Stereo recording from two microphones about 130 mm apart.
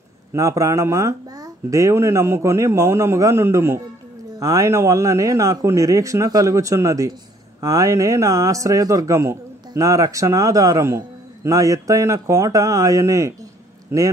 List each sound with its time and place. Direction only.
0.3 s a man's voice: 25° right (ahead or behind)